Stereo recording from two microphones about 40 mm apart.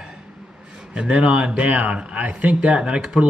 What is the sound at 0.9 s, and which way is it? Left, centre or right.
Speech, right.